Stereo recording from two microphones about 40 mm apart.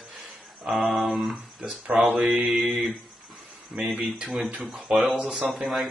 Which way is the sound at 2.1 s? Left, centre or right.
Centre.